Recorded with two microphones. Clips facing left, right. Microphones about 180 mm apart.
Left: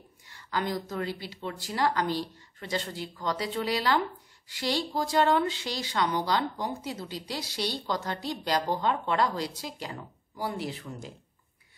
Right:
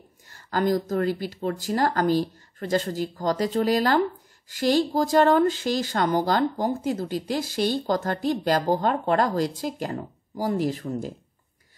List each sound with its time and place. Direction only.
0.3 s speech: 45° right (ahead or behind)